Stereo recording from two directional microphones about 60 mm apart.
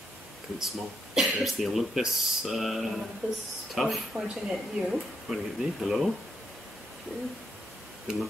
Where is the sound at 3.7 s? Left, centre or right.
Centre.